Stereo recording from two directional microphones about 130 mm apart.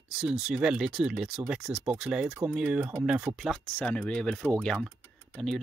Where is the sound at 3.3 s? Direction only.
25° right (ahead or behind).